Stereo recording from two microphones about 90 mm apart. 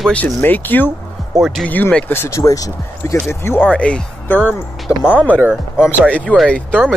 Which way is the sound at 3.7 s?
10° left (ahead or behind).